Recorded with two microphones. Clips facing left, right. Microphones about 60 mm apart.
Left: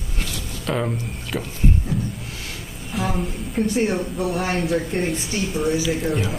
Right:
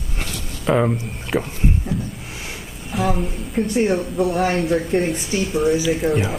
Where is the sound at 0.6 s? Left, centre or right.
Right.